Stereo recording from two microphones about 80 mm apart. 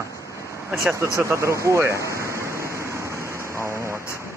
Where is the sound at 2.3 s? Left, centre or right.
Right.